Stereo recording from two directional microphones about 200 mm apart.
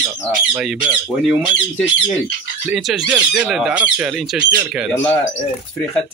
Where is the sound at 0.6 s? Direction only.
5° right (ahead or behind).